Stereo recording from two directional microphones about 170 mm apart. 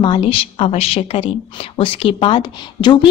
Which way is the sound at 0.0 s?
30° left (ahead or behind).